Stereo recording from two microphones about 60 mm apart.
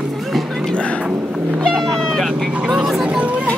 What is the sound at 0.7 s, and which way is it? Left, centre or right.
Music, centre.